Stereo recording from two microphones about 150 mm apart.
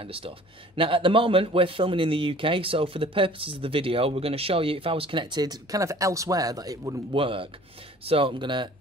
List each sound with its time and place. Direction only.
0.0 s a man's voice: 35° right (ahead or behind)
7.1 s a man's voice: 35° right (ahead or behind)